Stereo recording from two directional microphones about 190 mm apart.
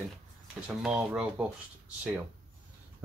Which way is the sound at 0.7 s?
5° right (ahead or behind).